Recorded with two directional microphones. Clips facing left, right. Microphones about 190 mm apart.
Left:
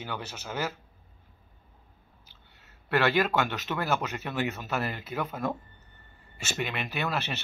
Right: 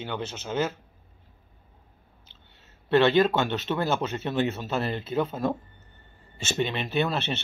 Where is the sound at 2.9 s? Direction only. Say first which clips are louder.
Right 5 dB; 25° right (ahead or behind).